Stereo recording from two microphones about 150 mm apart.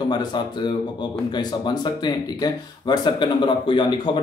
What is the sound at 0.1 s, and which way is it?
Speech, 30° left (ahead or behind).